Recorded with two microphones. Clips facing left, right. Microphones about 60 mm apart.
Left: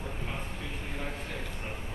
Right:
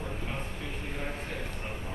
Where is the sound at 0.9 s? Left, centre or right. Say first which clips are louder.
Right 1 dB; right.